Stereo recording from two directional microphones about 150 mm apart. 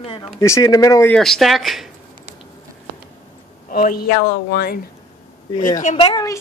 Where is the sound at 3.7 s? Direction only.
75° left (ahead or behind).